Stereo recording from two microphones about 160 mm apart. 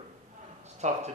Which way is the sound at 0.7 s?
45° right (ahead or behind).